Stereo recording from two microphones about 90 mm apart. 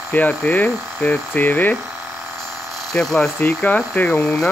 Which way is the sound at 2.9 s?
5° left (ahead or behind).